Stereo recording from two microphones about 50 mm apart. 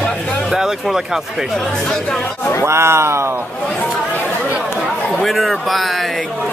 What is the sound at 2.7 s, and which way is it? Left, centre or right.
Speech, right.